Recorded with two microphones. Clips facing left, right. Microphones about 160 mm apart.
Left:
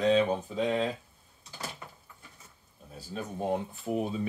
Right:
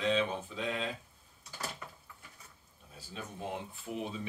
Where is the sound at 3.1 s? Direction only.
40° left (ahead or behind).